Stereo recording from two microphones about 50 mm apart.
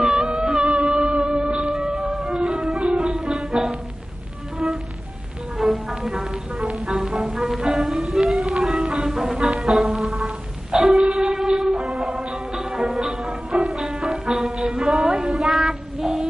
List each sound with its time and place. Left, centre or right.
0.0 s music: centre
2.1 s music: centre
5.6 s music: centre
15.0 s child singing: centre